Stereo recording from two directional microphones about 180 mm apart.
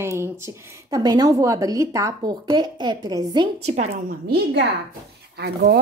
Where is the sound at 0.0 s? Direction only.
15° right (ahead or behind).